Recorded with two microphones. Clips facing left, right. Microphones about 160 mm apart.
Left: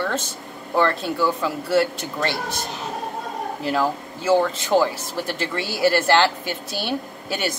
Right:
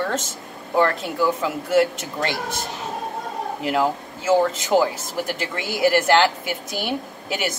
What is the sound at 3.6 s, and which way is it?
Speech, 15° right (ahead or behind).